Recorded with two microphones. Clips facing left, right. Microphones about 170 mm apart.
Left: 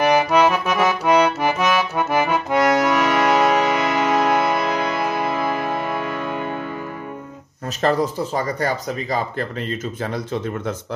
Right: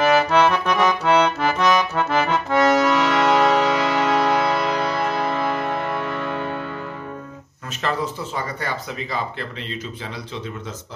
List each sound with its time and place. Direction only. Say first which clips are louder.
0.0 s accordion: left 1 dB; 15° left (ahead or behind)
7.8 s speech: left 6 dB; 40° left (ahead or behind)